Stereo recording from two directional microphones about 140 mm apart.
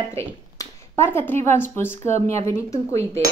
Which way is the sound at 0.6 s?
15° left (ahead or behind).